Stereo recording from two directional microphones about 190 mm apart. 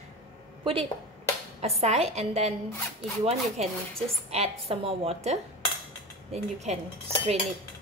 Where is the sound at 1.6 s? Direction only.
35° right (ahead or behind).